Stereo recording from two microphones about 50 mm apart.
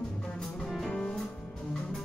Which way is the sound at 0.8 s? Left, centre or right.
Centre.